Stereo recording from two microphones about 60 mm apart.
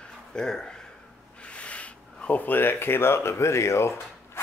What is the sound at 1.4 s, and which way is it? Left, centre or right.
Speech, centre.